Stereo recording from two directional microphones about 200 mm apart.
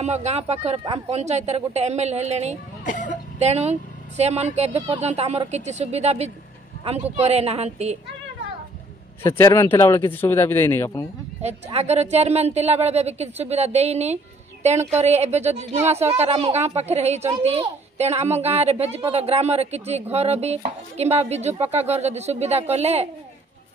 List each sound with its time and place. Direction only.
0.0 s a woman's voice: 35° right (ahead or behind)
2.8 s speech: 40° left (ahead or behind)
3.3 s a woman's voice: 35° right (ahead or behind)
9.2 s speech: 15° left (ahead or behind)
11.4 s a woman's voice: 30° right (ahead or behind)